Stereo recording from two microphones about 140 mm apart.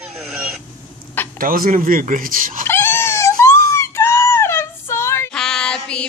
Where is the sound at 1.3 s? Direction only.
90° right.